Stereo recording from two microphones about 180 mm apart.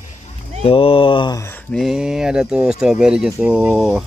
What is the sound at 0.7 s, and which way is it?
Mantra, 30° left (ahead or behind).